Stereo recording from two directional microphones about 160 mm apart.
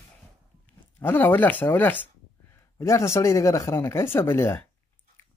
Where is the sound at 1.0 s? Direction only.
10° left (ahead or behind).